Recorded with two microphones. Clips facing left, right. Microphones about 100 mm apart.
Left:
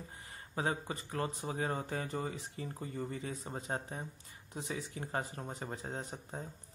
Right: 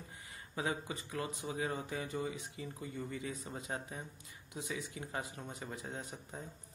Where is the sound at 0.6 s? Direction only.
40° left (ahead or behind).